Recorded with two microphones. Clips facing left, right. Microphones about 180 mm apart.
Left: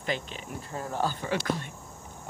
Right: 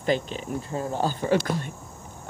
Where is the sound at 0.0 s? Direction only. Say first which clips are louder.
Right 8 dB; 35° right (ahead or behind).